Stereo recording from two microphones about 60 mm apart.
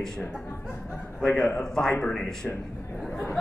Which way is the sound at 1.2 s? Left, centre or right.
Centre.